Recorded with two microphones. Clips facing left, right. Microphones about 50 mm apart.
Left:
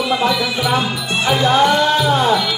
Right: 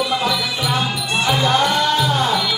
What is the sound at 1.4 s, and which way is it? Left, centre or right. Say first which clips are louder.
Music: left 6 dB; centre.